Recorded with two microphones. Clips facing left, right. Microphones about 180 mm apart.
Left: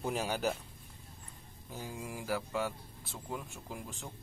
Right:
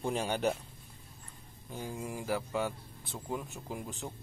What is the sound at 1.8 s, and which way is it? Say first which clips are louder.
Speech: right 3 dB; centre (ahead or behind).